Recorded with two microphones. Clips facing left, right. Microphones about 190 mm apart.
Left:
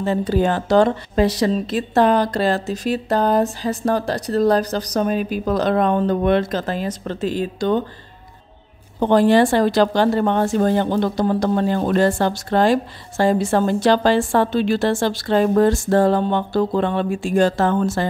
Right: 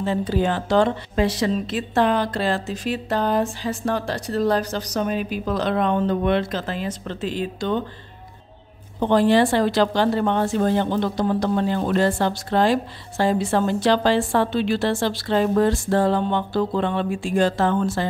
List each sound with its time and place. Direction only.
0.0 s speech: 45° left (ahead or behind)
9.0 s a woman's voice: 45° left (ahead or behind)